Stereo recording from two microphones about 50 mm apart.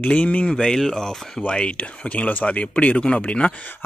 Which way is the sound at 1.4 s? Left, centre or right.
Left.